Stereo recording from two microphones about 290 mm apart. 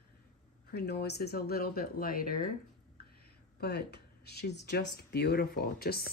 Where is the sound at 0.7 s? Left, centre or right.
Left.